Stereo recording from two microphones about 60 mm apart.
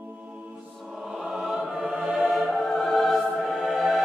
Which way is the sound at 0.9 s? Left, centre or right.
Centre.